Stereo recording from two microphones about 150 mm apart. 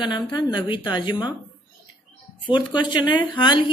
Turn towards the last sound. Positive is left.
turn(degrees=30)  # may be behind; listen again after turning